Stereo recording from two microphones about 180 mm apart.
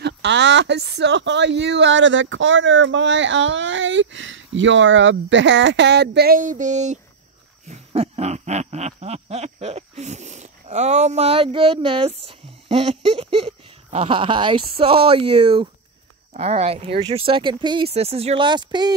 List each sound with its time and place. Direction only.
0.0 s speech: 80° right; by 7.0 s 40° right (ahead or behind)
7.6 s a sound: 35° right (ahead or behind)
16.3 s speech: 35° right (ahead or behind)